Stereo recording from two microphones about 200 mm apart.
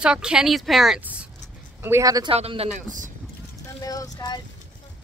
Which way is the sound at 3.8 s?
15° left (ahead or behind).